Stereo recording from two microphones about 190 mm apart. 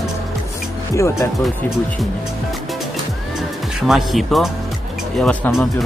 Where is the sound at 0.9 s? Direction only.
15° left (ahead or behind).